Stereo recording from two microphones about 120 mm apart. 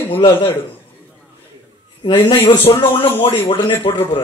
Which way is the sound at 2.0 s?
45° left (ahead or behind).